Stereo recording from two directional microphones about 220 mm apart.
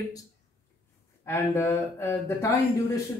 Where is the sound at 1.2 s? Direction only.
10° left (ahead or behind).